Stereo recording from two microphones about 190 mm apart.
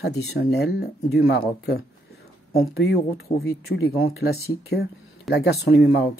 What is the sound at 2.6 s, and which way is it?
Speech, 80° left.